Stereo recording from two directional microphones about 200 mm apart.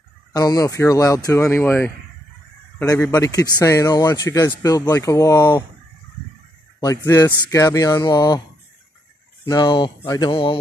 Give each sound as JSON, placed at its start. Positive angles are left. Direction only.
{"t": 0.3, "sound": "speech", "side_deg": 20}
{"t": 2.9, "sound": "speech", "side_deg": 10}
{"t": 6.8, "sound": "speech", "side_deg": 20}
{"t": 9.4, "sound": "speech", "side_deg": 20}